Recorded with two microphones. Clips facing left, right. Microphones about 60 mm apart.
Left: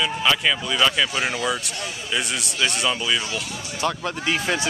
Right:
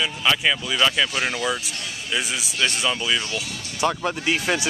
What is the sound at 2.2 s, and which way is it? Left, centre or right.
Speech, centre.